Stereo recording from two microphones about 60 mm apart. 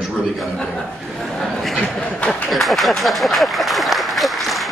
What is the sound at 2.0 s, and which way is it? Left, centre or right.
Speech, left.